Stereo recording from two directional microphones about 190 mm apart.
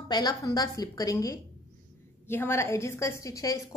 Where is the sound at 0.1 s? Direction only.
20° left (ahead or behind).